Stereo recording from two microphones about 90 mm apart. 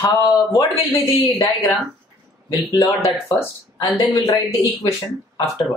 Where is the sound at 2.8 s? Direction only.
35° left (ahead or behind).